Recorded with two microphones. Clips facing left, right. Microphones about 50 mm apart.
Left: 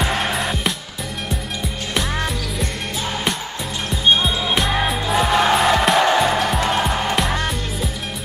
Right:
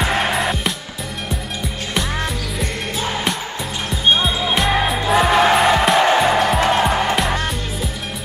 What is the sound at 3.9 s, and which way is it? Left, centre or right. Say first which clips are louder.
Music: even; centre.